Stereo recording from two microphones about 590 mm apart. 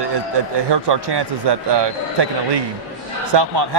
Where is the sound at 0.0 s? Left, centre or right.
Right.